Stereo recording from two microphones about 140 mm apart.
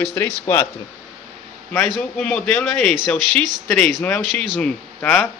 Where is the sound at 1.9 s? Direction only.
5° left (ahead or behind).